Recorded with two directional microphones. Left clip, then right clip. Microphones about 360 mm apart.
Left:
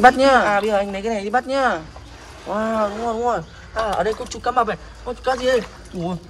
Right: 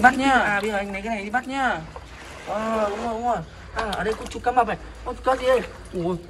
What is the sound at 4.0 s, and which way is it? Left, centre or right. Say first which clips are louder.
Speech: left 5 dB; centre.